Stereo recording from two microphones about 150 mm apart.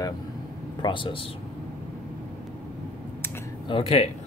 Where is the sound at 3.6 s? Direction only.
40° left (ahead or behind).